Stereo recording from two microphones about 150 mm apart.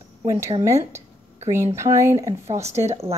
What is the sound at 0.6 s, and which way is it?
Speech, 20° right (ahead or behind).